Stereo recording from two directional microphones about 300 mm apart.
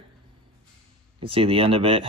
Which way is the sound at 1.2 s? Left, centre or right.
Centre.